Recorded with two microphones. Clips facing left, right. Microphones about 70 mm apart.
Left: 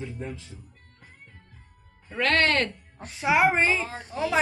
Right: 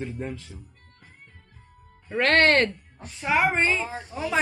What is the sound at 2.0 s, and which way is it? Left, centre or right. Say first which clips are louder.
Speech: right 4 dB; right.